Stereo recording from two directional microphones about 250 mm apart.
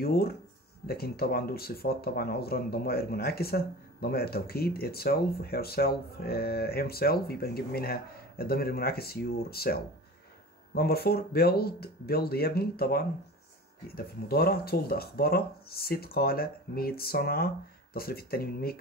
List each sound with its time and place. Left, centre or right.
0.0 s speech: left